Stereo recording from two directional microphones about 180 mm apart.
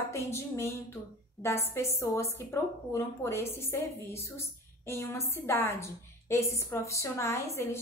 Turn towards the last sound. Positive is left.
turn(degrees=15)  # may be behind; listen again after turning